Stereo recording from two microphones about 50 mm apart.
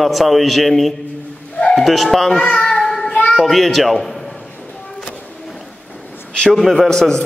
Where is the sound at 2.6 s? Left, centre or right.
Centre.